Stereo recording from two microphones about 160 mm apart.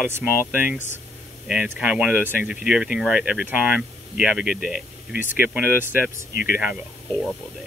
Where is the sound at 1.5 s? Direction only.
5° right (ahead or behind).